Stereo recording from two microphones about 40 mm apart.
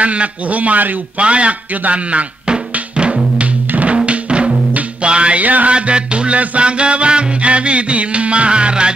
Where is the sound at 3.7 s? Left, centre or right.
Right.